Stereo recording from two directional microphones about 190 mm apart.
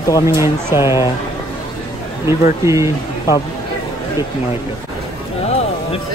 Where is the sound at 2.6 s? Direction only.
15° right (ahead or behind).